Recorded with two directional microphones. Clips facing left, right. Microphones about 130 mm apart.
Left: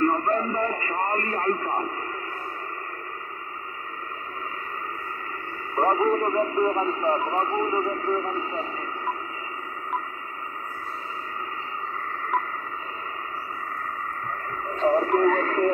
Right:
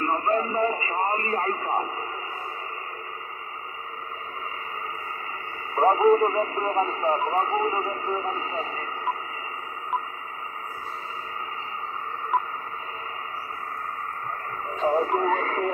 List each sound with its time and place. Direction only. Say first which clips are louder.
0.0 s radio: left 1 dB; 5° right (ahead or behind)
5.8 s speech: right 3 dB; 10° right (ahead or behind)
14.7 s speech: left 2 dB; 5° right (ahead or behind)